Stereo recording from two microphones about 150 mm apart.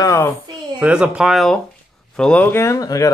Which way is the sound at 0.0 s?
20° left (ahead or behind).